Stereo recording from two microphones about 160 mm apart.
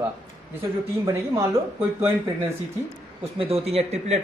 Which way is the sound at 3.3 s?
40° right (ahead or behind).